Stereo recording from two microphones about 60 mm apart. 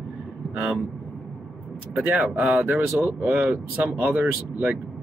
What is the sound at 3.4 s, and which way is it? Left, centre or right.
Speech, centre.